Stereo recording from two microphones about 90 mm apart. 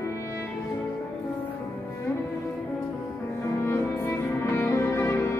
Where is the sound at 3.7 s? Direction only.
25° left (ahead or behind).